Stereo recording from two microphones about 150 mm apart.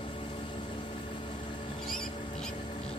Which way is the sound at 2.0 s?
35° left (ahead or behind).